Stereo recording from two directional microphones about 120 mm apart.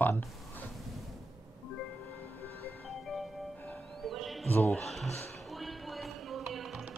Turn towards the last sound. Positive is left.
turn(degrees=0)  # may be behind; listen again after turning